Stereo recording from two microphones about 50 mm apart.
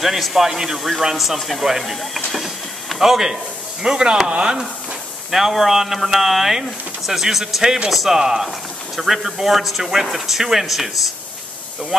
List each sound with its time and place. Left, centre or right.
0.0 s speech: centre
5.3 s speech: centre